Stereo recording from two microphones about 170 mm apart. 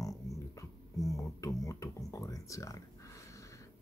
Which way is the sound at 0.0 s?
20° left (ahead or behind).